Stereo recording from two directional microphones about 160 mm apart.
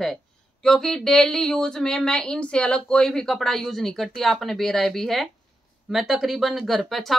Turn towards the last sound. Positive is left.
turn(degrees=0)  # may be behind; listen again after turning